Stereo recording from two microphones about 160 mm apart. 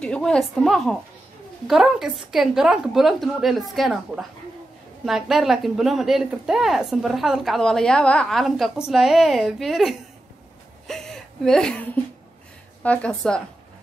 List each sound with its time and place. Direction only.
0.0 s a woman's voice: 5° left (ahead or behind)